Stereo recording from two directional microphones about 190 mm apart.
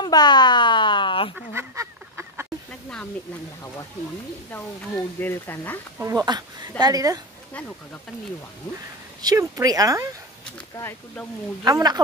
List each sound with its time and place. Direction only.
0.0 s a sound: 20° left (ahead or behind)
1.5 s duck: 15° right (ahead or behind)
4.5 s speech: 10° left (ahead or behind)
5.9 s speech: 15° right (ahead or behind)
9.2 s speech: 20° right (ahead or behind)
10.8 s speech: 10° left (ahead or behind)
11.6 s speech: 20° right (ahead or behind)